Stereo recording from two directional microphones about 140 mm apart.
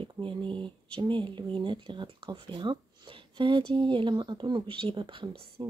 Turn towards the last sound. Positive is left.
turn(degrees=-40)  # may be behind; listen again after turning